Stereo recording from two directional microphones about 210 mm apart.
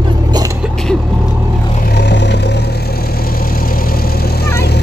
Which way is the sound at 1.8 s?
50° left (ahead or behind).